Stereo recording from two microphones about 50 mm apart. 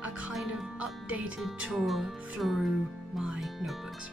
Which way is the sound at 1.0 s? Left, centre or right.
Right.